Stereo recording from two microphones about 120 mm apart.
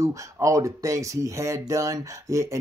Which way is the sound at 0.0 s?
25° right (ahead or behind).